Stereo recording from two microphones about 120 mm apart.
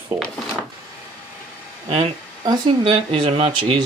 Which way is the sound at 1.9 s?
40° right (ahead or behind).